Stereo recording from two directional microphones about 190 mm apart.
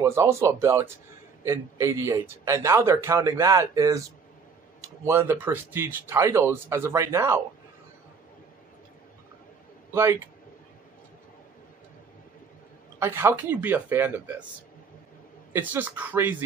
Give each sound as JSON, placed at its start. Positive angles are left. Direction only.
{"t": 0.0, "sound": "a man's voice", "side_deg": -15}
{"t": 13.0, "sound": "a man's voice", "side_deg": -10}
{"t": 15.5, "sound": "a man's voice", "side_deg": -10}